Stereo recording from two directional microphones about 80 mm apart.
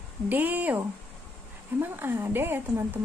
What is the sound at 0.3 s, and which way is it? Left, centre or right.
A woman's voice, right.